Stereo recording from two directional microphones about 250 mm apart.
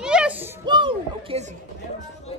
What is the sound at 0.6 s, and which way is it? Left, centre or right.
Speech, centre.